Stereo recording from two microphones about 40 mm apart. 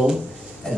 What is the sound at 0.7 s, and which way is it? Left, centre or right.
Speech, centre.